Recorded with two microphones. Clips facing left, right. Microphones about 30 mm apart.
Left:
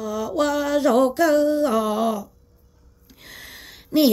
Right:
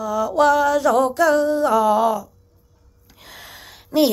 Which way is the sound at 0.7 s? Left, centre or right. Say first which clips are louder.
Right 1 dB; centre.